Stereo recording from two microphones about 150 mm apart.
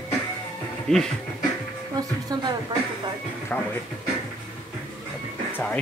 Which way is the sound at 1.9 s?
25° right (ahead or behind).